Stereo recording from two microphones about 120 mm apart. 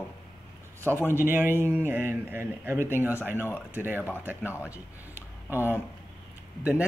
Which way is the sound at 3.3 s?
20° left (ahead or behind).